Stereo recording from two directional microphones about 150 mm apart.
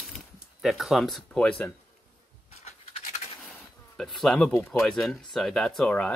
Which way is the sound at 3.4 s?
Centre (ahead or behind).